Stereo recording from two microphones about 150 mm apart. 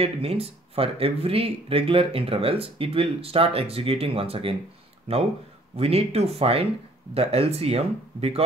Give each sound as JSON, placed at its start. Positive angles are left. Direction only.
{"t": 0.0, "sound": "speech", "side_deg": -40}